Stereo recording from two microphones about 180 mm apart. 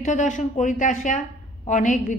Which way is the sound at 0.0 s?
45° left (ahead or behind).